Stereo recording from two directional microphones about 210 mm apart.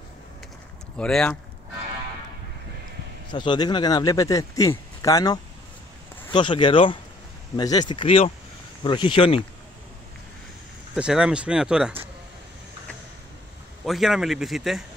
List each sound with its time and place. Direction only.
0.9 s speech: 5° left (ahead or behind)
3.3 s speech: 20° left (ahead or behind)
11.0 s speech: 5° right (ahead or behind)
13.8 s speech: centre (ahead or behind)